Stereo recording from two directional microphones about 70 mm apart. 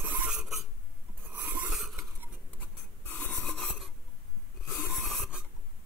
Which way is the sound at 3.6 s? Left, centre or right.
Centre.